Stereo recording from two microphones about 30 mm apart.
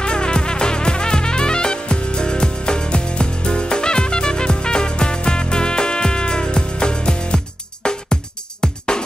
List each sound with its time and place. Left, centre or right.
0.0 s music: left